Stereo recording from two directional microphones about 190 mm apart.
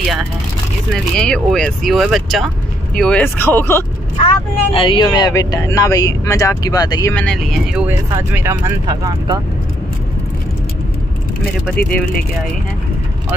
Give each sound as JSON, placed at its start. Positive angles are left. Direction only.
{"t": 1.1, "sound": "speech", "side_deg": 5}
{"t": 4.2, "sound": "speech", "side_deg": 30}
{"t": 7.2, "sound": "speech", "side_deg": 5}
{"t": 8.1, "sound": "speech", "side_deg": -15}
{"t": 11.6, "sound": "speech", "side_deg": 5}